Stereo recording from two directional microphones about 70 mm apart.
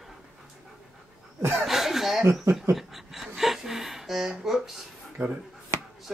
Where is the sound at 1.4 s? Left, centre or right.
Right.